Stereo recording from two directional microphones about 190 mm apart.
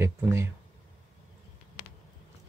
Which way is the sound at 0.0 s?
15° right (ahead or behind).